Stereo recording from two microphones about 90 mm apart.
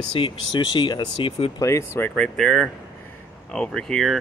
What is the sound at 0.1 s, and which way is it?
Speech, 60° left (ahead or behind).